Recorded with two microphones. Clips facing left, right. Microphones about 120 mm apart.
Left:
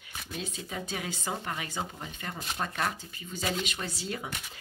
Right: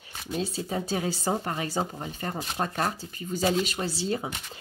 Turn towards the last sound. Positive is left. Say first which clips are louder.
# right 7 dB
turn(degrees=-30)  # may be behind; listen again after turning